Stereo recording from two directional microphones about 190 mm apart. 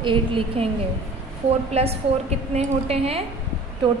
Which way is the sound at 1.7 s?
35° right (ahead or behind).